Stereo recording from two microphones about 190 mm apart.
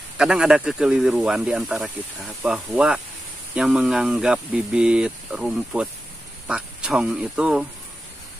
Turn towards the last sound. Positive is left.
turn(degrees=-5)  # may be behind; listen again after turning